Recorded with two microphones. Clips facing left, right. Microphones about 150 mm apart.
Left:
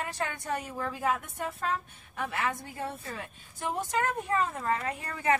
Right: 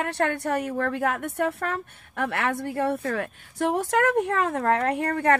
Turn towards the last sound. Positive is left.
turn(degrees=-60)  # may be behind; listen again after turning